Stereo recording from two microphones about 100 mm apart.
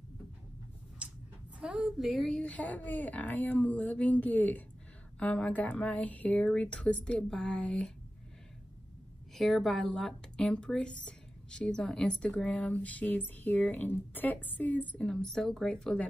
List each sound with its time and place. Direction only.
1.6 s a woman's voice: 5° right (ahead or behind)
2.5 s speech: 15° left (ahead or behind)
9.3 s speech: centre (ahead or behind)